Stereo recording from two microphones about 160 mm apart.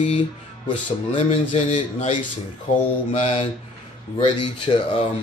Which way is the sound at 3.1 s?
35° left (ahead or behind).